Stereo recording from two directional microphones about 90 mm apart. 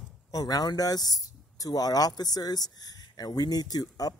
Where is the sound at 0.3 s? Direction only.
45° left (ahead or behind).